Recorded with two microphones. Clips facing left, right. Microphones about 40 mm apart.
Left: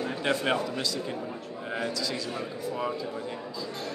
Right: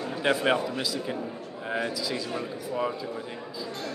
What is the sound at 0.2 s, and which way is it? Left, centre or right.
Speech, centre.